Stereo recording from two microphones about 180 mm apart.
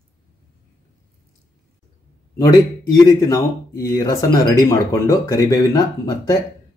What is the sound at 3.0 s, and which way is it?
Speech, 20° left (ahead or behind).